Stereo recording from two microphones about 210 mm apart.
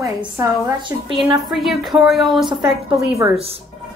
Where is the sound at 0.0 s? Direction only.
15° right (ahead or behind).